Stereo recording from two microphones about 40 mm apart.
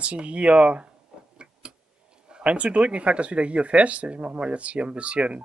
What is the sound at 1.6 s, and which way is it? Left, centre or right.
Vehicle, right.